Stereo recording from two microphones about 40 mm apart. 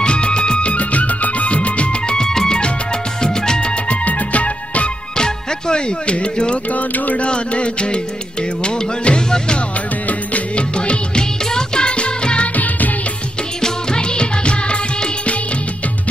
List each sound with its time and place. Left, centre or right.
0.0 s music: left
3.6 s music: left
5.1 s music: centre
6.7 s music: left
7.2 s music: left
12.5 s music: left
13.6 s music: centre